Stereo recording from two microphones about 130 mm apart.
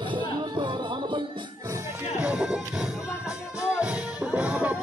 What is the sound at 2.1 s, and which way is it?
Music, 5° right (ahead or behind).